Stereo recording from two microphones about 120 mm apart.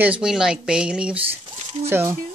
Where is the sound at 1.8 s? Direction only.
20° right (ahead or behind).